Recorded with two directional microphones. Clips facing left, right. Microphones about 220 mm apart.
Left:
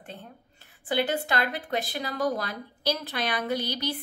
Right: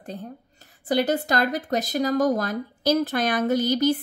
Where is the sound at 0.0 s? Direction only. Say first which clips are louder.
Right 8 dB; 40° right (ahead or behind).